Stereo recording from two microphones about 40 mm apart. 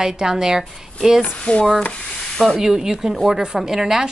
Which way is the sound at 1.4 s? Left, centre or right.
Left.